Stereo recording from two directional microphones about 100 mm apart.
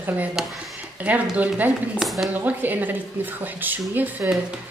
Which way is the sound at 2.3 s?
15° right (ahead or behind).